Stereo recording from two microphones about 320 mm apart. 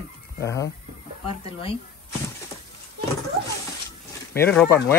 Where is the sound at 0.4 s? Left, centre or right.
Centre.